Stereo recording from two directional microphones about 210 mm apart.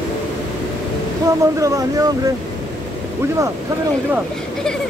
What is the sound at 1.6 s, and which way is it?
Speech, 15° right (ahead or behind).